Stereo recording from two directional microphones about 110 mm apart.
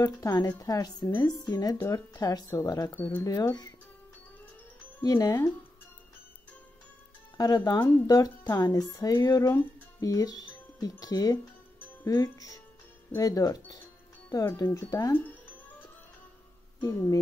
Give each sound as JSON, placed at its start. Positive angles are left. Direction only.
{"t": 0.0, "sound": "speech", "side_deg": 35}
{"t": 5.0, "sound": "speech", "side_deg": 35}
{"t": 7.3, "sound": "speech", "side_deg": 35}
{"t": 15.1, "sound": "music", "side_deg": 15}
{"t": 16.8, "sound": "speech", "side_deg": 30}